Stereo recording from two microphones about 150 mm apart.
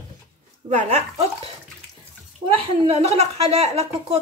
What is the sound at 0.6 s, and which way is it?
Speech, 50° right (ahead or behind).